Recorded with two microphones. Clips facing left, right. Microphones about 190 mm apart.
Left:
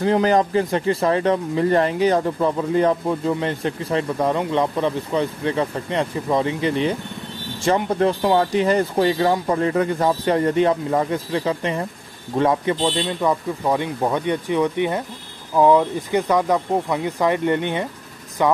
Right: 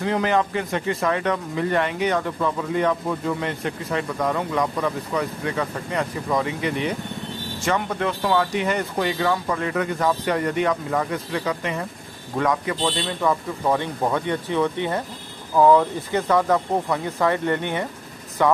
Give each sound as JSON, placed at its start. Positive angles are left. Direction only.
{"t": 0.0, "sound": "speech", "side_deg": 35}
{"t": 13.3, "sound": "speech", "side_deg": 15}